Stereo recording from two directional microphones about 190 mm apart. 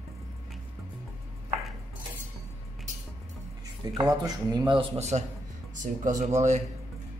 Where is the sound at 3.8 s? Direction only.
20° right (ahead or behind); by 6.6 s 35° right (ahead or behind).